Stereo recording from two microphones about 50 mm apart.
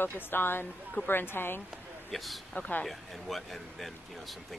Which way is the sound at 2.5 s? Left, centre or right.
Left.